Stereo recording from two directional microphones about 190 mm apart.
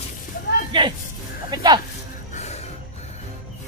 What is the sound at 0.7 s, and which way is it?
Speech, 25° right (ahead or behind).